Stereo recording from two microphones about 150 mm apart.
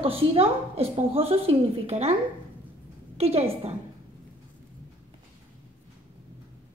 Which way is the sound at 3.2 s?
45° right (ahead or behind).